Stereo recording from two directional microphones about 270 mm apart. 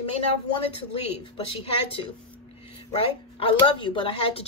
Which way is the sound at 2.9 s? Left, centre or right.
Centre.